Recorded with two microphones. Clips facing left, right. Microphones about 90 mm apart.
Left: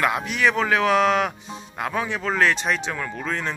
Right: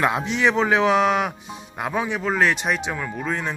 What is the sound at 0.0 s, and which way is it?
Speech, 25° right (ahead or behind).